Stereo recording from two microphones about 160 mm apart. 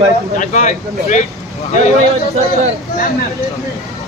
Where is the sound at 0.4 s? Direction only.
50° left (ahead or behind).